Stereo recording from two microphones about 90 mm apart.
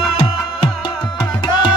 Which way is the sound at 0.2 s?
90° left.